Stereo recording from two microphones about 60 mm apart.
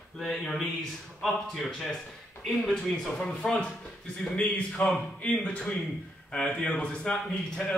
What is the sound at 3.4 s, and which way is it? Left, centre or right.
A man's voice, centre.